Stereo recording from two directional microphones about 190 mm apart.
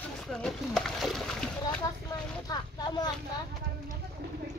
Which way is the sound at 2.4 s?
20° left (ahead or behind).